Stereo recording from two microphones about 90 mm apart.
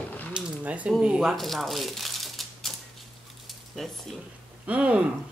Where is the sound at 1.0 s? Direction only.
5° right (ahead or behind).